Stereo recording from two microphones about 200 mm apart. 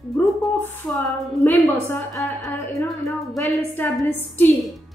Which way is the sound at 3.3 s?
Centre (ahead or behind).